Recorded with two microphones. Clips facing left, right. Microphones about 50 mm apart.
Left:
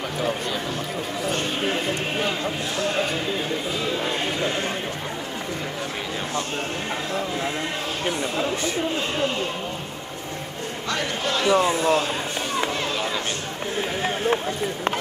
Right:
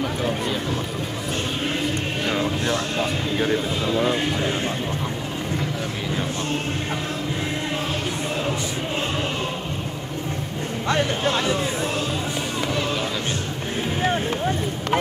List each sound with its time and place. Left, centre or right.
10.9 s speech: right
11.4 s speech: left